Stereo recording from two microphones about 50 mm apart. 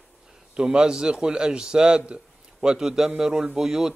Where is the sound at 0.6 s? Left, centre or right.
Centre.